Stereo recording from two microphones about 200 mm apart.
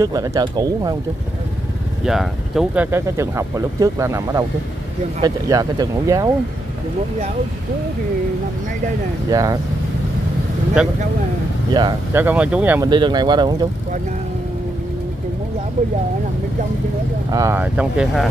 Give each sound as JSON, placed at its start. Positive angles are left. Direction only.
{"t": 0.0, "sound": "speech", "side_deg": -15}
{"t": 2.0, "sound": "speech", "side_deg": 0}
{"t": 9.3, "sound": "speech", "side_deg": -20}
{"t": 11.7, "sound": "speech", "side_deg": -20}
{"t": 12.2, "sound": "speech", "side_deg": -10}
{"t": 12.9, "sound": "speech", "side_deg": -20}
{"t": 17.3, "sound": "speech", "side_deg": -15}